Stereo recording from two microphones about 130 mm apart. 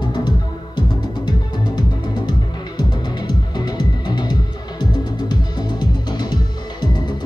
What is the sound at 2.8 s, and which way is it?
Music, 35° left (ahead or behind).